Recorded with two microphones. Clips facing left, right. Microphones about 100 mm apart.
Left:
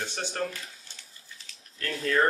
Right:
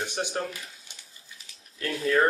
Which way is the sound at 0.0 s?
15° right (ahead or behind).